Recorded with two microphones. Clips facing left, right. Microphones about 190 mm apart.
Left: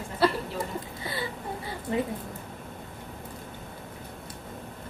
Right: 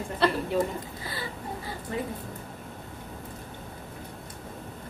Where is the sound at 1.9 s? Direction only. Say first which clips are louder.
Left 4 dB; 20° left (ahead or behind).